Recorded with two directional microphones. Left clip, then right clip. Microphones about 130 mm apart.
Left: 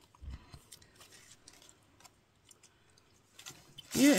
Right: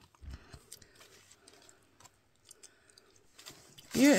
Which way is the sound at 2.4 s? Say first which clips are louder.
Right 5 dB; 40° right (ahead or behind).